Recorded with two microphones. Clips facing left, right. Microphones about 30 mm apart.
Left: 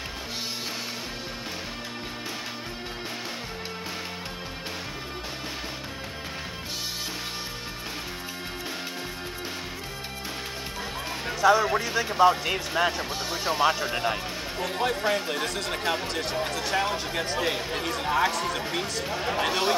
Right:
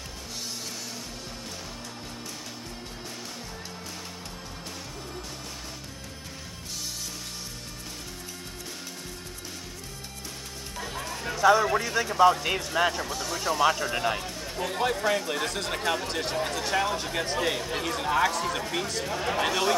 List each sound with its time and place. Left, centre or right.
10.8 s music: centre
11.4 s speech: centre
13.0 s speech: left
14.0 s speech: centre
15.0 s speech: centre
15.3 s speech: centre
15.8 s speech: centre
16.1 s speech: centre
17.5 s speech: centre